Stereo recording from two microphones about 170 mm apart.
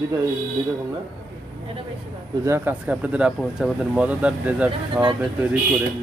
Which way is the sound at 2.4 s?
15° right (ahead or behind).